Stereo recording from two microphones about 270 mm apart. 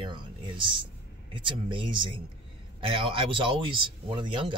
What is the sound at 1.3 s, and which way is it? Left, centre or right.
Speech, centre.